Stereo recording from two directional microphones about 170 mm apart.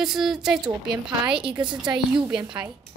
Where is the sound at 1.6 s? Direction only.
25° right (ahead or behind).